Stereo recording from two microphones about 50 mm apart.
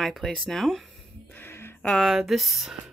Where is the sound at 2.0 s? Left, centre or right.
Centre.